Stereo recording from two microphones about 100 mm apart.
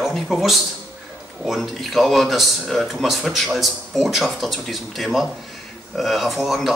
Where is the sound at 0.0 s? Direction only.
Centre (ahead or behind).